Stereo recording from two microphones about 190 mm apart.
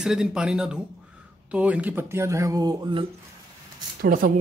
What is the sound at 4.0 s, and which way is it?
Speech, 45° right (ahead or behind).